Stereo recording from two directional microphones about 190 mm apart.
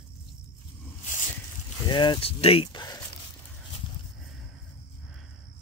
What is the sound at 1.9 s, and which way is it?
Speech, 25° left (ahead or behind).